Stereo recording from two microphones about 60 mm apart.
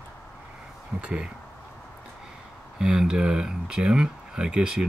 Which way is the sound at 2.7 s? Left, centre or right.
Centre.